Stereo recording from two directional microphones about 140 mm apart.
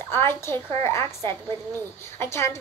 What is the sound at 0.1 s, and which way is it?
A woman's voice, 20° left (ahead or behind).